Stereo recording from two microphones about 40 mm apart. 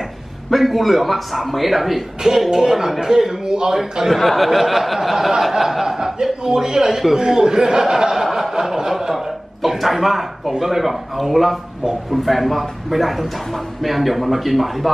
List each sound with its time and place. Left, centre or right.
0.5 s a man's voice: centre
4.0 s a man's voice: centre